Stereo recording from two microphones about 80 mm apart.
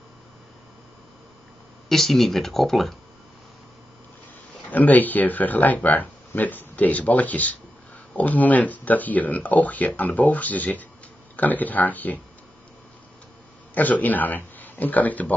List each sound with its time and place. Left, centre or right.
1.9 s speech: centre
4.6 s speech: left
13.7 s speech: left